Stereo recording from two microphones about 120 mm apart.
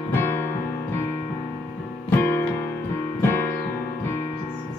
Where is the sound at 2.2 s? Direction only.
20° left (ahead or behind).